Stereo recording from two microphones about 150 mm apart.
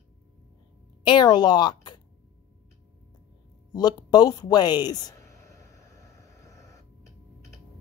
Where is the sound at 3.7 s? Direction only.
30° left (ahead or behind).